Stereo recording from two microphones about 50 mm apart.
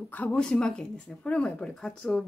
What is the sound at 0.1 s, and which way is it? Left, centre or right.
Speech, left.